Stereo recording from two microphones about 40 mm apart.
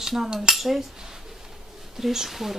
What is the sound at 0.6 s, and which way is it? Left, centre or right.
Speech, centre.